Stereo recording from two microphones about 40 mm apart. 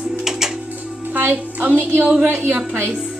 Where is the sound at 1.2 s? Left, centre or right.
Right.